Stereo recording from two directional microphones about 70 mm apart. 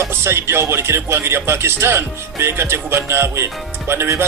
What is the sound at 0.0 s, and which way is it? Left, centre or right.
Speech, right.